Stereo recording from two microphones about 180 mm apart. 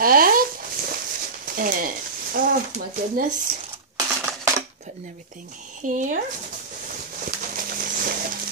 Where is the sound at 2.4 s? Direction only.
50° right (ahead or behind).